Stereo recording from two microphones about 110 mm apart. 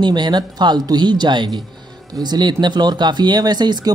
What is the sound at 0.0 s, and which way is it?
Speech, 40° right (ahead or behind).